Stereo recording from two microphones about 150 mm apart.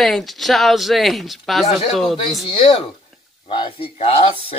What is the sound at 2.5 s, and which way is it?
Speech, 35° left (ahead or behind).